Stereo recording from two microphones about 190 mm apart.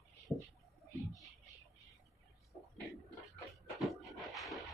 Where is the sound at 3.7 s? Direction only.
Centre (ahead or behind).